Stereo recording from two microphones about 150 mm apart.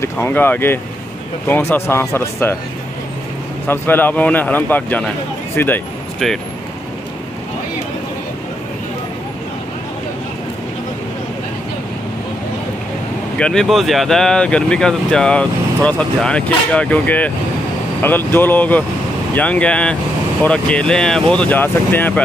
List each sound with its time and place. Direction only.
0.0 s speech: 15° left (ahead or behind)
3.6 s speech: 15° left (ahead or behind)
6.1 s speech: centre (ahead or behind)
13.4 s speech: 5° left (ahead or behind)